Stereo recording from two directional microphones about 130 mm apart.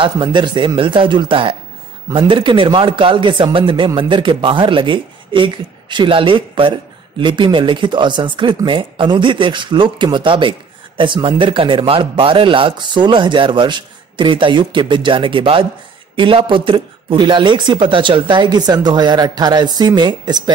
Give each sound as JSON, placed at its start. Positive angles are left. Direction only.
{"t": 0.0, "sound": "speech", "side_deg": -35}